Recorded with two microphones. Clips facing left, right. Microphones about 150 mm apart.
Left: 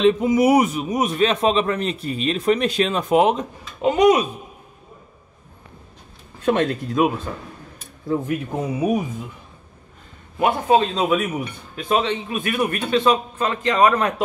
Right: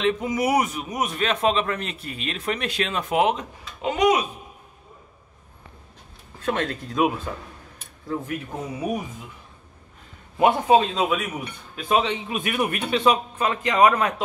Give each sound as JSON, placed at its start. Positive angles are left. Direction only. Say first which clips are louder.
{"t": 0.0, "sound": "a man's voice", "louder": "left 7 dB", "side_deg": 30}
{"t": 6.4, "sound": "speech", "louder": "left 6 dB", "side_deg": 15}
{"t": 7.3, "sound": "a man's voice", "louder": "left 2 dB", "side_deg": -5}
{"t": 8.1, "sound": "speech", "louder": "left 6 dB", "side_deg": 20}
{"t": 10.4, "sound": "a man's voice", "louder": "even", "side_deg": -15}
{"t": 11.1, "sound": "speech", "louder": "left 5 dB", "side_deg": 0}
{"t": 11.9, "sound": "a man's voice", "louder": "left 1 dB", "side_deg": -15}